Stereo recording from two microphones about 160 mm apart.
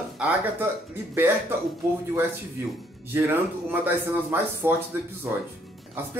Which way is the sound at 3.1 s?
15° right (ahead or behind).